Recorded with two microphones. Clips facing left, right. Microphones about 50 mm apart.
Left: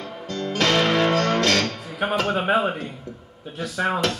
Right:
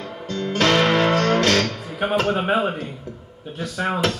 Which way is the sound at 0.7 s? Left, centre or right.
Centre.